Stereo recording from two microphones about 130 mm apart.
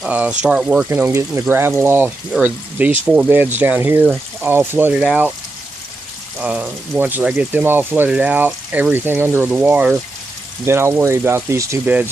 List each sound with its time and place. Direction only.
0.0 s speech: 10° right (ahead or behind)
0.8 s speech: 15° right (ahead or behind)
6.4 s speech: 10° right (ahead or behind)